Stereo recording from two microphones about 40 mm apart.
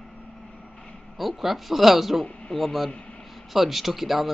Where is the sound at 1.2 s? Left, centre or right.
Centre.